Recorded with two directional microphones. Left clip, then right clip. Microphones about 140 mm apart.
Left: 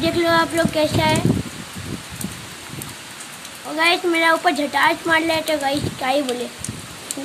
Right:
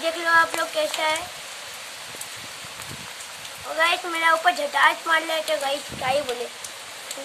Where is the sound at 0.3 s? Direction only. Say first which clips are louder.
Right 2 dB; 25° left (ahead or behind).